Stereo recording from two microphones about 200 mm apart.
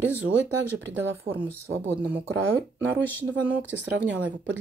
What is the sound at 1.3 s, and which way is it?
Speech, 55° right (ahead or behind).